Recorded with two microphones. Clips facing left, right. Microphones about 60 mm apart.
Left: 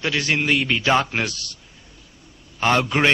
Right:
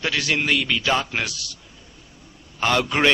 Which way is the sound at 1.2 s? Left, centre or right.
Left.